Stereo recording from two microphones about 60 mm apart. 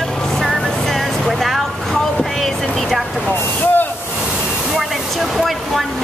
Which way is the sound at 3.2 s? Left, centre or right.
Left.